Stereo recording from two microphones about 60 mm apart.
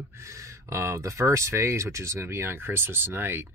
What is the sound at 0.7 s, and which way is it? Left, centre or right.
Speech, right.